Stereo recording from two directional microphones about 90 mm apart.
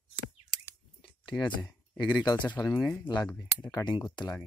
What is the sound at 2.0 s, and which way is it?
Speech, 55° left (ahead or behind).